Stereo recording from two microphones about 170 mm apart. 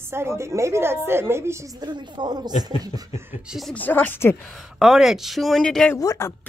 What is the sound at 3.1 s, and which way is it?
Speech, 10° right (ahead or behind).